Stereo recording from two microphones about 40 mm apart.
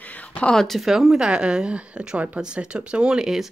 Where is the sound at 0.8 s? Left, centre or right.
Centre.